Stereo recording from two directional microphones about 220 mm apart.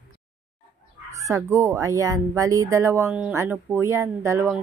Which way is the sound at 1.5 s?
10° right (ahead or behind).